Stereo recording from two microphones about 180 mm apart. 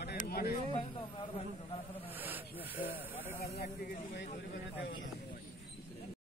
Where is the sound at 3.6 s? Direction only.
55° left (ahead or behind).